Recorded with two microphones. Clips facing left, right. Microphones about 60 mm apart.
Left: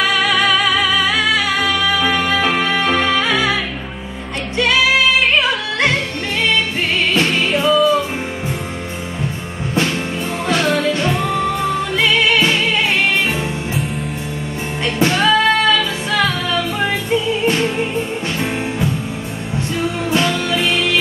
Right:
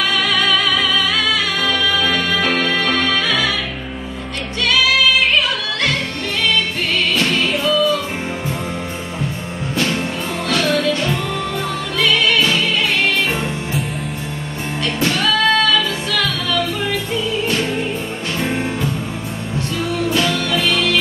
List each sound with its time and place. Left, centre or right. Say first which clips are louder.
0.0 s music: left 2 dB; centre
4.6 s music: left 2 dB; left
7.2 s music: left 2 dB; left
10.5 s music: left 1 dB; left
15.0 s music: left 4 dB; left
20.1 s music: left 2 dB; left